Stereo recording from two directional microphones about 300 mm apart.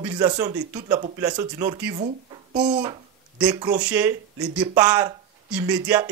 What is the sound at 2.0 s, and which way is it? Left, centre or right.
Speech, centre.